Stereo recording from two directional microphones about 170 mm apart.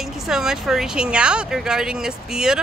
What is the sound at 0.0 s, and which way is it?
Speech, 5° right (ahead or behind).